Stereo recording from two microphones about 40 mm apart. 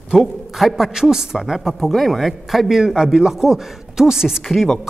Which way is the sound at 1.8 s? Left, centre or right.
Centre.